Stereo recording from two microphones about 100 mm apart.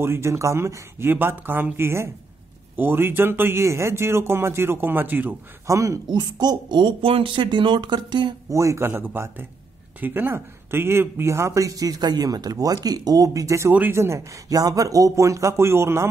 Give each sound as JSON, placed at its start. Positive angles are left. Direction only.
{"t": 0.0, "sound": "speech", "side_deg": -25}
{"t": 5.7, "sound": "speech", "side_deg": -30}
{"t": 6.0, "sound": "speech", "side_deg": -45}
{"t": 7.1, "sound": "speech", "side_deg": -60}
{"t": 8.5, "sound": "speech", "side_deg": -30}